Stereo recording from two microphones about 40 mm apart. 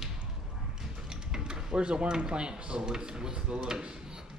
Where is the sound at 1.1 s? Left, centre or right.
Centre.